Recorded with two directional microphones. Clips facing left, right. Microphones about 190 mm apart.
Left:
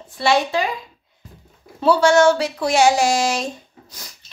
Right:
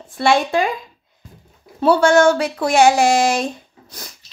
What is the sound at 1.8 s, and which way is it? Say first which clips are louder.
Speech: right 1 dB; 55° right (ahead or behind).